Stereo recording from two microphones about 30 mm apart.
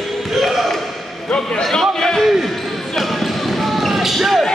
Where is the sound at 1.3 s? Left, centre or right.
Left.